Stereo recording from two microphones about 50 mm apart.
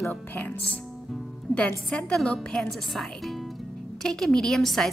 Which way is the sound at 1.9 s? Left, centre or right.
Centre.